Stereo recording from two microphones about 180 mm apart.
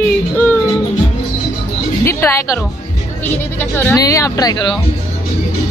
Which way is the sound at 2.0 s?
15° left (ahead or behind).